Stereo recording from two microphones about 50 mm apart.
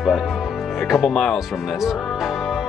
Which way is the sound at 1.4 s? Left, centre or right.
Centre.